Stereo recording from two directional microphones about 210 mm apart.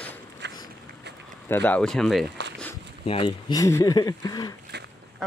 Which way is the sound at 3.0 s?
25° left (ahead or behind).